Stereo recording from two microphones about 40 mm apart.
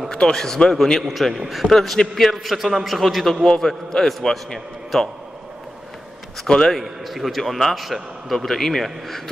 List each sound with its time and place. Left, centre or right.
0.1 s a man's voice: centre
1.0 s a man's voice: centre
3.4 s a man's voice: centre
6.4 s a man's voice: centre
6.8 s a man's voice: centre
8.4 s a man's voice: centre